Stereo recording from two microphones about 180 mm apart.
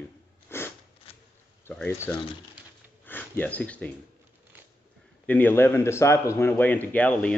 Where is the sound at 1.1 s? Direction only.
30° left (ahead or behind).